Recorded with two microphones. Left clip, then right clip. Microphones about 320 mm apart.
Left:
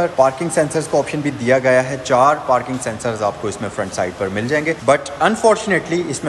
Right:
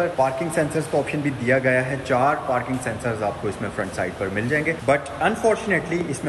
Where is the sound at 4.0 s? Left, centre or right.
Centre.